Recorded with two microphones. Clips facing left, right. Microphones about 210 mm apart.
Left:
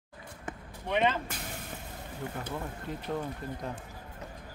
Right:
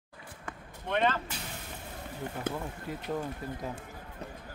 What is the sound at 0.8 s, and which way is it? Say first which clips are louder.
Speech: left 1 dB; 10° left (ahead or behind).